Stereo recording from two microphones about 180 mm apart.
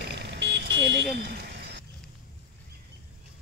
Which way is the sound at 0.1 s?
70° right (ahead or behind).